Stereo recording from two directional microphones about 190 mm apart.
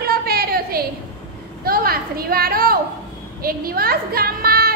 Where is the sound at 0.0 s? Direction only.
55° right (ahead or behind).